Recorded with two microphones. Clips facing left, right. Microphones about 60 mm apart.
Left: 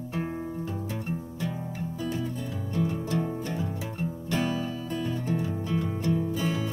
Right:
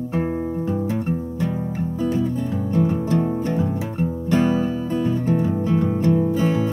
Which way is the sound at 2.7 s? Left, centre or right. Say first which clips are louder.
Right 8 dB; right.